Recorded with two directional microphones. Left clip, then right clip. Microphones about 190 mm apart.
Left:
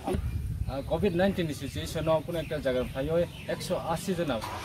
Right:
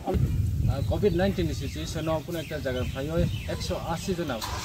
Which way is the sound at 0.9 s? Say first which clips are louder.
Right 1 dB; 10° left (ahead or behind).